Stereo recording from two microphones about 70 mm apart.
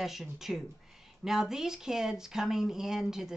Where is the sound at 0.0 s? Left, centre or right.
Centre.